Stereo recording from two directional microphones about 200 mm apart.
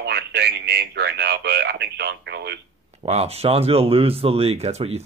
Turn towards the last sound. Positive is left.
turn(degrees=-30)  # may be behind; listen again after turning